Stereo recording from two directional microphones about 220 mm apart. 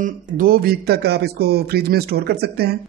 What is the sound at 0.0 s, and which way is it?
A man's voice, 40° right (ahead or behind).